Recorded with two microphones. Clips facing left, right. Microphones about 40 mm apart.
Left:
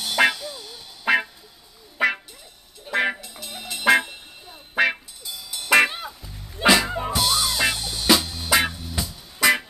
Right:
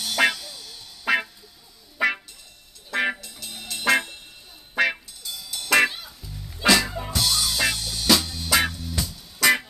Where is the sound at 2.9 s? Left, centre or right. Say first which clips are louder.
Left 2 dB; centre.